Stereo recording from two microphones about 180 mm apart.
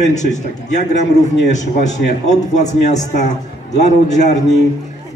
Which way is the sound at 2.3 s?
40° left (ahead or behind).